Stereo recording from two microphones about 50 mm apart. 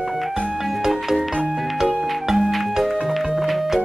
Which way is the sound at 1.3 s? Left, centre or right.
Right.